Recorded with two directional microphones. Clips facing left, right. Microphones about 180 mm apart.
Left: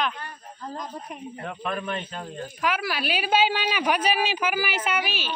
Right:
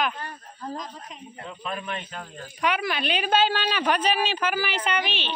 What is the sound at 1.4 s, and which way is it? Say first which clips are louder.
Speech: left 3 dB; 50° left (ahead or behind).